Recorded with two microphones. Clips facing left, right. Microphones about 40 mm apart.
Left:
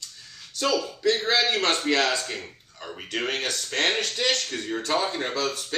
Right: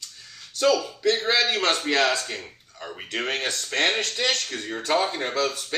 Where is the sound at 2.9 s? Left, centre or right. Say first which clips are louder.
Even; right.